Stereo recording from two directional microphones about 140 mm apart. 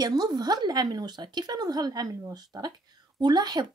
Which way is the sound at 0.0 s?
30° right (ahead or behind).